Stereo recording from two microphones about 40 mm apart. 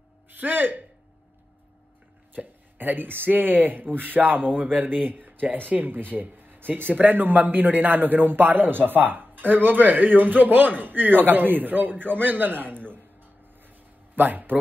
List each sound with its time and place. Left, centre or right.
0.4 s speech: right
2.3 s speech: right
13.6 s a sound: right